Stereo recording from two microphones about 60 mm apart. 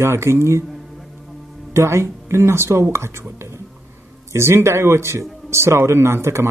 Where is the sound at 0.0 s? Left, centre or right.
Right.